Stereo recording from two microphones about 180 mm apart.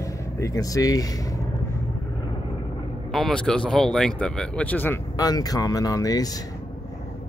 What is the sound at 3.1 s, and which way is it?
Speech, centre (ahead or behind).